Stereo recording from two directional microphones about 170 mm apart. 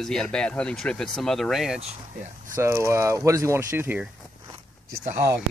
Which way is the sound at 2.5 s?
15° right (ahead or behind).